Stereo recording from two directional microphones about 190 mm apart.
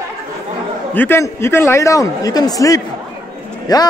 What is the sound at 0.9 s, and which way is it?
A man's voice, 10° left (ahead or behind).